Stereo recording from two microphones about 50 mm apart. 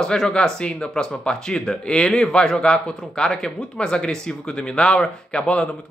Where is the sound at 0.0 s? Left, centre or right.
Centre.